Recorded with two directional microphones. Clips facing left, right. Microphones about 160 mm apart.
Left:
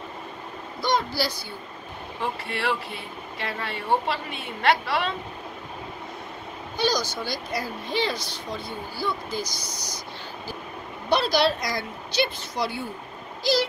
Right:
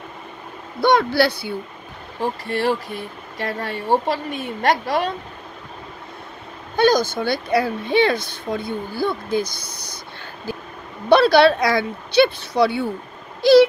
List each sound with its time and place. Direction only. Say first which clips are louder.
0.7 s speech: right 9 dB; 65° right (ahead or behind)
2.5 s speech: right 7 dB; 40° right (ahead or behind)
6.8 s speech: right 9 dB; 50° right (ahead or behind)
11.1 s speech: right 9 dB; 60° right (ahead or behind)
13.4 s a sound: right 13 dB; 60° right (ahead or behind)